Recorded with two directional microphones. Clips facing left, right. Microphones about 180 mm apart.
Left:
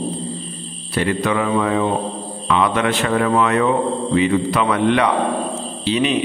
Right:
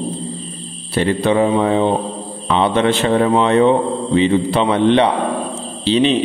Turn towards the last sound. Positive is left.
turn(degrees=-30)  # may be behind; listen again after turning